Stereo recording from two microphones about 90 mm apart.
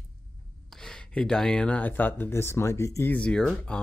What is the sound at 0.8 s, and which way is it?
Speech, 5° left (ahead or behind).